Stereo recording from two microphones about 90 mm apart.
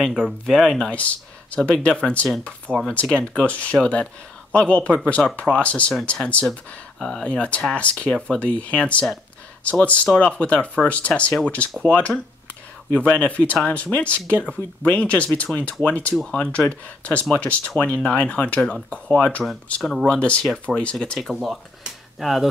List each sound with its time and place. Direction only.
0.1 s speech: centre (ahead or behind)
12.9 s speech: 15° left (ahead or behind); by 22.5 s centre (ahead or behind)